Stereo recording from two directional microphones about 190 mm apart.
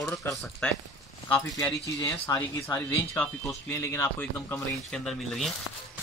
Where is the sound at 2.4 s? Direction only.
20° left (ahead or behind).